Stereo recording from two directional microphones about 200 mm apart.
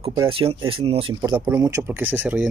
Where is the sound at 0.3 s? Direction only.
25° right (ahead or behind).